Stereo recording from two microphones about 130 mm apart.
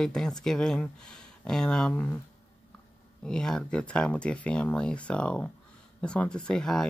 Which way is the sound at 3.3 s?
5° left (ahead or behind).